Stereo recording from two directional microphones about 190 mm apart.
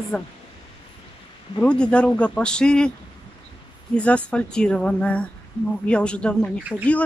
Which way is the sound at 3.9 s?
5° left (ahead or behind).